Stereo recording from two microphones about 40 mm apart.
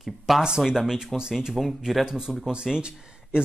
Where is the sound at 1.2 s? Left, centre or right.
Centre.